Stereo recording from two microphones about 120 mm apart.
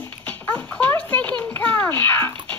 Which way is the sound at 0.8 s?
15° left (ahead or behind).